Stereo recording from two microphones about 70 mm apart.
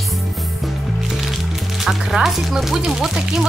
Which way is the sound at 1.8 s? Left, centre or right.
Centre.